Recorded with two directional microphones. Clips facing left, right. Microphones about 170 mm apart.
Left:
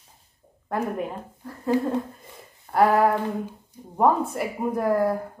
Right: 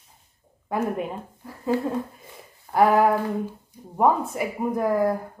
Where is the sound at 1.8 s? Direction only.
Centre (ahead or behind).